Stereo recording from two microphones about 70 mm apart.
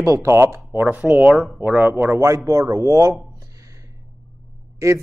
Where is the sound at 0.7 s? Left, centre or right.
Right.